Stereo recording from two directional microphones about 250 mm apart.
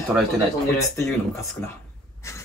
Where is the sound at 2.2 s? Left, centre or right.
Centre.